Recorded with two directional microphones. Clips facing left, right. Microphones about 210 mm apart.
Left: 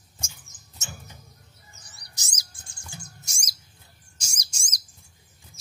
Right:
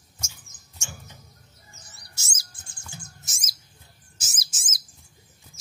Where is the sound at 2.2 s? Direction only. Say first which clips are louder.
Even; 15° left (ahead or behind).